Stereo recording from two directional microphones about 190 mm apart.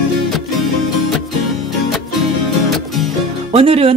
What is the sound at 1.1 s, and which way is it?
Music, centre (ahead or behind).